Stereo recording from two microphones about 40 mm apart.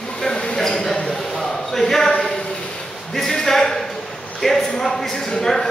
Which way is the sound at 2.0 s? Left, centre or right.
Left.